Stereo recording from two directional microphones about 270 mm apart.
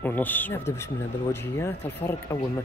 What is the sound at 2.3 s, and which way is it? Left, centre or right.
Speech, centre.